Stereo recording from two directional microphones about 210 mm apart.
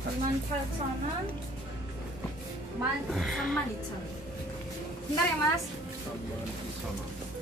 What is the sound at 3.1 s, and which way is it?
Speech, centre (ahead or behind).